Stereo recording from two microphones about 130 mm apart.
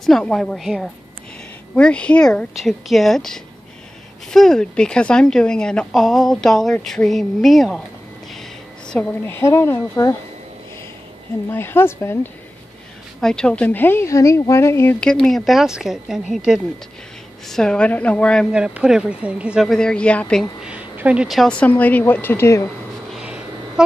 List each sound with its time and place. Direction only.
0.0 s speech: 5° left (ahead or behind)
8.3 s a sound: 5° left (ahead or behind)
9.2 s speech: 20° left (ahead or behind)
11.5 s speech: 15° left (ahead or behind)
13.2 s speech: 5° left (ahead or behind)
15.0 s speech: 5° left (ahead or behind)
17.5 s speech: 5° left (ahead or behind)
18.5 s speech: 5° right (ahead or behind)
20.6 s speech: 10° right (ahead or behind); by 22.7 s 20° left (ahead or behind)
23.1 s a sound: 10° right (ahead or behind)